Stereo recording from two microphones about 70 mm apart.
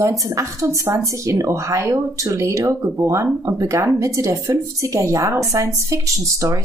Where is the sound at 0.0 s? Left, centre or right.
Right.